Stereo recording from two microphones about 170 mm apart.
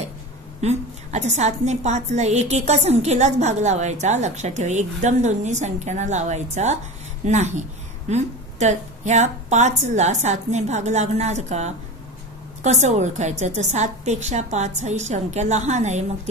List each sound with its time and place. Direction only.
0.6 s a woman's voice: 40° right (ahead or behind)